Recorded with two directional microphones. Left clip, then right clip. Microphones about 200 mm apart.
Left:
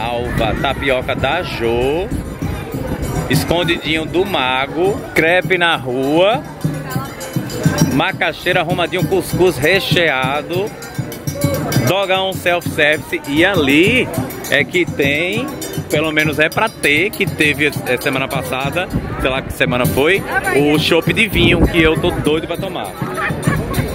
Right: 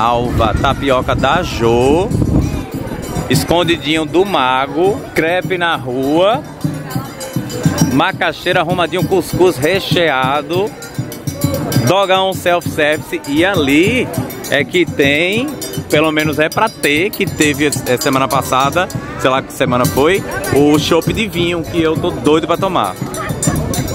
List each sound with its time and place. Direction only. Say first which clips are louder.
0.0 s speech: right 5 dB; 25° right (ahead or behind)
3.4 s speech: right 4 dB; 30° right (ahead or behind)
5.1 s speech: left 2 dB; centre (ahead or behind)
7.9 s speech: right 4 dB; 20° right (ahead or behind)
11.9 s speech: right 5 dB; 25° right (ahead or behind); by 14.0 s 5° right (ahead or behind)
14.7 s speech: right 3 dB; 25° right (ahead or behind)
16.1 s speech: even; 15° right (ahead or behind)
22.2 s speech: right 5 dB; 25° right (ahead or behind)